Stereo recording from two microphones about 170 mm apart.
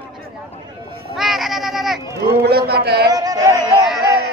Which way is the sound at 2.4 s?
70° right (ahead or behind).